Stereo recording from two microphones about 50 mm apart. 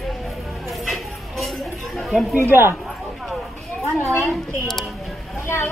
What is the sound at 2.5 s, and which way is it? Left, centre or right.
Speech, right.